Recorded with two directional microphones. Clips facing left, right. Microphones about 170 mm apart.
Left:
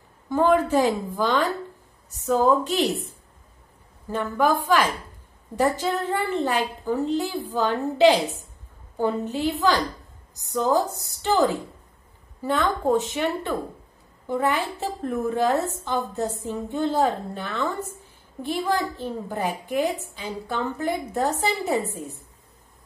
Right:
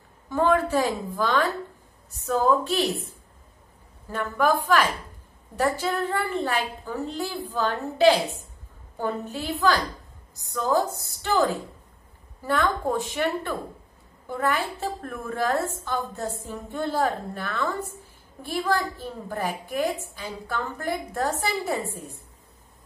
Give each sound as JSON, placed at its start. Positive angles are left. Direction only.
{"t": 0.3, "sound": "a woman's voice", "side_deg": 15}
{"t": 4.1, "sound": "a woman's voice", "side_deg": 20}
{"t": 5.6, "sound": "a woman's voice", "side_deg": 15}
{"t": 12.4, "sound": "a woman's voice", "side_deg": 20}